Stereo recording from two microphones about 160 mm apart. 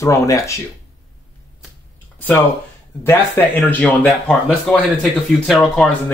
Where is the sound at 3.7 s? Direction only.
10° left (ahead or behind).